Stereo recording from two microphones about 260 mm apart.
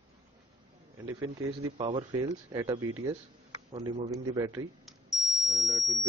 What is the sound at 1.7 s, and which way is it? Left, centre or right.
Speech, centre.